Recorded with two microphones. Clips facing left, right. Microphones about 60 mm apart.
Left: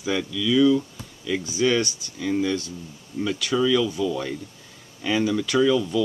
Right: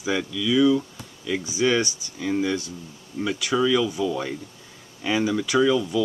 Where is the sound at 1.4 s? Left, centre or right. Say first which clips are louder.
Even; centre.